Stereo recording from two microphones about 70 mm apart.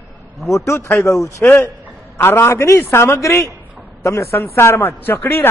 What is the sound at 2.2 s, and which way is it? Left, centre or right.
A man's voice, left.